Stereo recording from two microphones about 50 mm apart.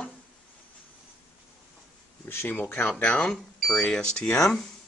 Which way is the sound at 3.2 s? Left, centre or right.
Centre.